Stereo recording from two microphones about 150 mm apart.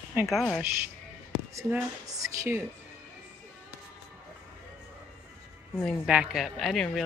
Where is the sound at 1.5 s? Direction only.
20° right (ahead or behind).